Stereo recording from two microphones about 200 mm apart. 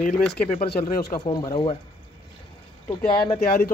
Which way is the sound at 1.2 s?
25° left (ahead or behind).